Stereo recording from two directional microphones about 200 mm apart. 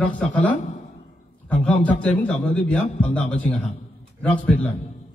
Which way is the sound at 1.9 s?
5° left (ahead or behind).